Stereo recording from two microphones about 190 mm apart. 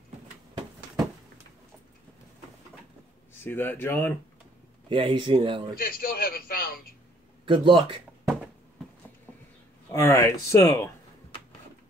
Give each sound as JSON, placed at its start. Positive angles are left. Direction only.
{"t": 3.4, "sound": "speech", "side_deg": 10}
{"t": 4.8, "sound": "speech", "side_deg": -30}
{"t": 5.8, "sound": "a man's voice", "side_deg": 50}
{"t": 7.4, "sound": "speech", "side_deg": -25}
{"t": 9.8, "sound": "speech", "side_deg": 15}